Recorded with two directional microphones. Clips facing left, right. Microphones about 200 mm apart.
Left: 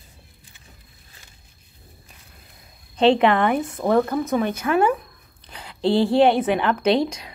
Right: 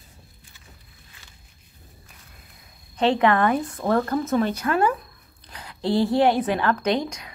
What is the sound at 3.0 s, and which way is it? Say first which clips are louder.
A woman's voice: left 3 dB; 25° left (ahead or behind).